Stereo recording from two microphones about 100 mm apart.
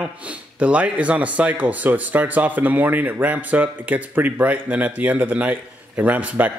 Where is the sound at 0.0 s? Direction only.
15° right (ahead or behind).